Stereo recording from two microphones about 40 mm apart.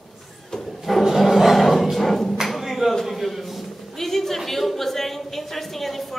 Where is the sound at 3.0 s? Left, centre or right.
Centre.